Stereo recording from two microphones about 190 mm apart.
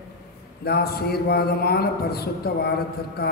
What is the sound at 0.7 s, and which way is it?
Speech, 55° left (ahead or behind).